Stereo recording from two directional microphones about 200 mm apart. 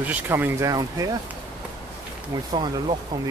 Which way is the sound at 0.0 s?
10° right (ahead or behind).